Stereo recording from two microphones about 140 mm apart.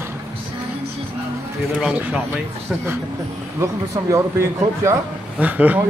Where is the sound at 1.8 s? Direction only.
10° right (ahead or behind).